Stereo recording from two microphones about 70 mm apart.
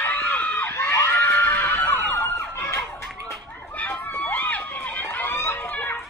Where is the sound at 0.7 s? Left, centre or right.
Left.